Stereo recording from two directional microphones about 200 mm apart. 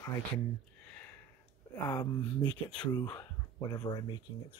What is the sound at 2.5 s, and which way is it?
Speech, 5° left (ahead or behind).